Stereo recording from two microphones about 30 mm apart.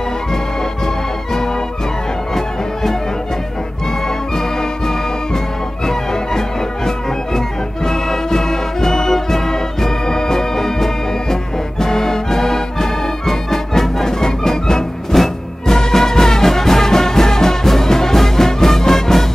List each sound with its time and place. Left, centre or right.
2.3 s music: centre
7.3 s music: centre